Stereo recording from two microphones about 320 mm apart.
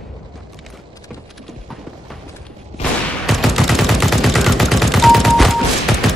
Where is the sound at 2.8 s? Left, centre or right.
Centre.